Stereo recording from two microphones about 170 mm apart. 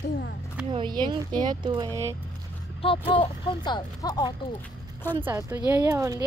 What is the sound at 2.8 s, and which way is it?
Speech, 30° left (ahead or behind).